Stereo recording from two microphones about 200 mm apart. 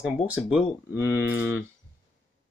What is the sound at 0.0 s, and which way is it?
Speech, 5° right (ahead or behind).